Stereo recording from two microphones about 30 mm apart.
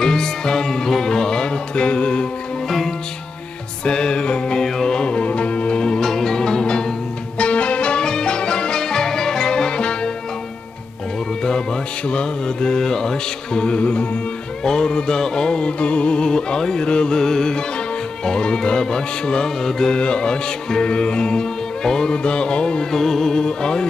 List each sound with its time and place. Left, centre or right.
0.0 s music: centre; by 2.2 s left
3.8 s music: left
4.6 s music: centre
4.9 s music: left
5.9 s music: centre
7.3 s music: left
12.1 s music: left
13.7 s music: left
14.6 s music: left
16.2 s music: left
17.2 s music: centre
22.2 s music: left
22.8 s music: centre
23.4 s music: left